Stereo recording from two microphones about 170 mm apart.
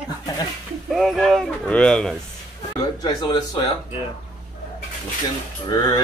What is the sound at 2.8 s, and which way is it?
Speech, 25° left (ahead or behind).